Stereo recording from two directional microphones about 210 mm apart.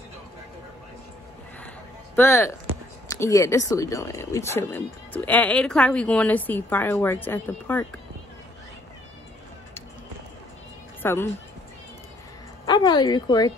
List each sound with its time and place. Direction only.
2.1 s speech: 10° left (ahead or behind)
11.0 s speech: 10° left (ahead or behind)
12.6 s a woman's voice: 20° left (ahead or behind)